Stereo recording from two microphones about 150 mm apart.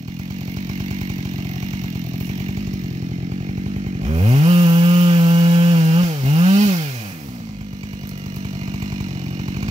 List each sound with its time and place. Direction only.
4.0 s chainsaw: 40° right (ahead or behind)